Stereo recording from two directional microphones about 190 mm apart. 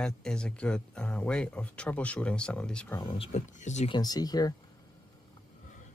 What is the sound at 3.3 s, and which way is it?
Speech, 35° left (ahead or behind).